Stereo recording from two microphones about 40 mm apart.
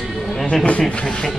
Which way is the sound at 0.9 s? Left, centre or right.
Left.